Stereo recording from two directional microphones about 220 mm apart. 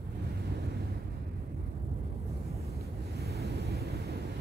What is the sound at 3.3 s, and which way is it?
Vehicle, 45° right (ahead or behind).